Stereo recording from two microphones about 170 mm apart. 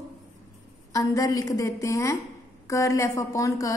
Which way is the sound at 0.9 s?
20° left (ahead or behind).